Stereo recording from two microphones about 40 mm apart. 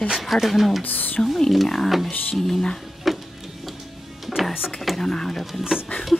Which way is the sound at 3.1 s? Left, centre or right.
Centre.